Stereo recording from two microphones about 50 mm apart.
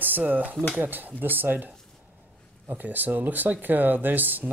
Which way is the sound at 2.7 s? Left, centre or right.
Right.